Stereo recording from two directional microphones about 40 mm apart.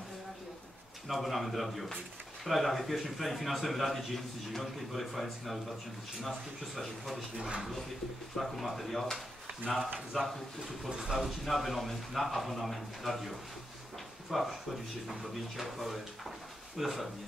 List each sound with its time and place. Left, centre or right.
1.0 s a man's voice: centre
7.3 s speech: right
8.4 s a man's voice: centre
10.9 s speech: centre
11.2 s a man's voice: centre
14.3 s a man's voice: centre